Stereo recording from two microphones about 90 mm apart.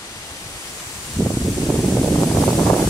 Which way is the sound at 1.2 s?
40° left (ahead or behind).